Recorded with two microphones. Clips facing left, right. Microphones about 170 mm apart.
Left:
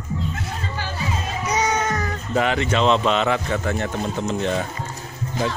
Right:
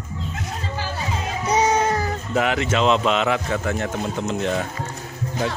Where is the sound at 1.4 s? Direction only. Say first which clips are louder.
Right 4 dB; 30° right (ahead or behind).